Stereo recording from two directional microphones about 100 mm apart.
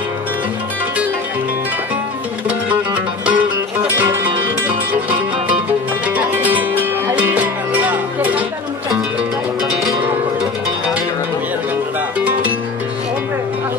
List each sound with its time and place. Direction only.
2.4 s music: 10° right (ahead or behind)
6.0 s music: 15° right (ahead or behind)